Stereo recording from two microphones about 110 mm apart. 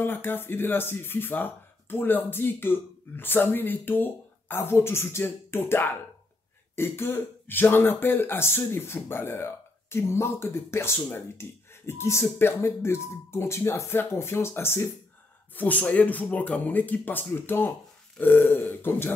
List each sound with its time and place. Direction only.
0.0 s speech: 20° left (ahead or behind)